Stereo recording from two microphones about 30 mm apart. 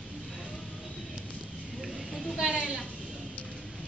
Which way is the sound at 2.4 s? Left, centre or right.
Right.